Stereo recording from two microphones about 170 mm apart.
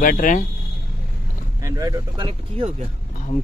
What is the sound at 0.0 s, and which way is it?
Speech, 50° left (ahead or behind).